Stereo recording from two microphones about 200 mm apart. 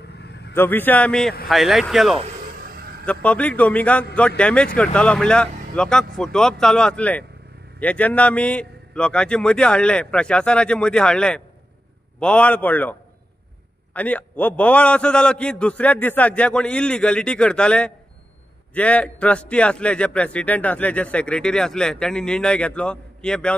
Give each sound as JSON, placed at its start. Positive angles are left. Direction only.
{"t": 0.0, "sound": "vehicle", "side_deg": 55}
{"t": 0.6, "sound": "a man's voice", "side_deg": 10}
{"t": 13.9, "sound": "a man's voice", "side_deg": 5}